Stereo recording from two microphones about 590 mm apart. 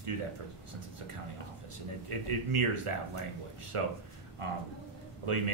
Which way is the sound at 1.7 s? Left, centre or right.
Right.